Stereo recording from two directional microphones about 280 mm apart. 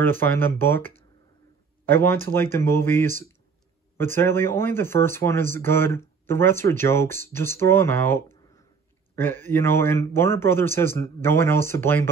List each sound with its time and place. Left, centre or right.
0.0 s speech: centre